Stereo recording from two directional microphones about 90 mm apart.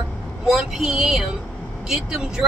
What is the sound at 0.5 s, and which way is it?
Speech, 5° right (ahead or behind).